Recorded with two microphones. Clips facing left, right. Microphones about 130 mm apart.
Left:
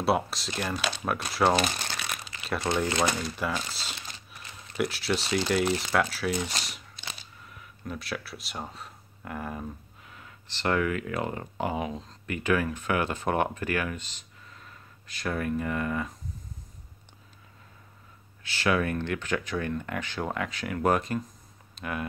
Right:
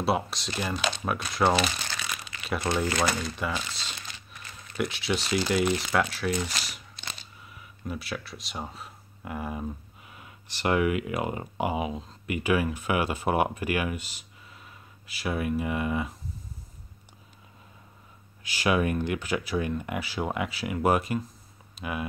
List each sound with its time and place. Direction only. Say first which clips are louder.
0.0 s speech: left 1 dB; centre (ahead or behind)
1.6 s crumpling: even; 45° left (ahead or behind)
2.4 s speech: even; centre (ahead or behind)
2.9 s speech: even; 20° left (ahead or behind)
3.3 s speech: even; centre (ahead or behind)
7.0 s a sound: right 1 dB; 10° left (ahead or behind)
7.4 s speech: right 2 dB; 5° right (ahead or behind)
18.4 s speech: right 1 dB; 15° right (ahead or behind)